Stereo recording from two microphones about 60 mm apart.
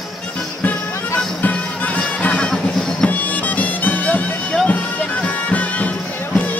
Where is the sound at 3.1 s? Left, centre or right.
Left.